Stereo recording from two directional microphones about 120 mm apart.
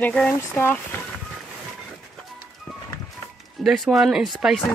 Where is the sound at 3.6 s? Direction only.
Centre (ahead or behind).